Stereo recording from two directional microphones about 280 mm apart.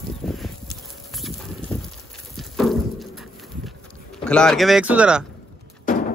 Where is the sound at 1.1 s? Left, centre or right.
Centre.